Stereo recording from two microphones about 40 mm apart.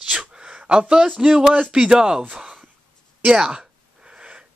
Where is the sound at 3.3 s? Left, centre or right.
Centre.